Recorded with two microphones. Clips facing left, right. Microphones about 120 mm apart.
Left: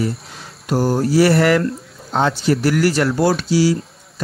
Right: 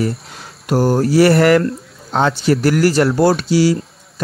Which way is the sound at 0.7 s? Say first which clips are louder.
Right 3 dB; 65° right (ahead or behind).